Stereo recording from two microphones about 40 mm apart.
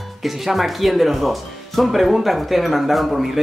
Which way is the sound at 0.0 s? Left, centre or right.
Centre.